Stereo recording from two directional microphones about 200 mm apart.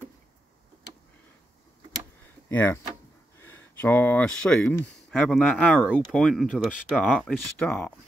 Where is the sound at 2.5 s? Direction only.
10° left (ahead or behind).